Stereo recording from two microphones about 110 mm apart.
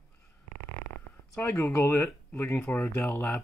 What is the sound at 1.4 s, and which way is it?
Speech, 25° left (ahead or behind).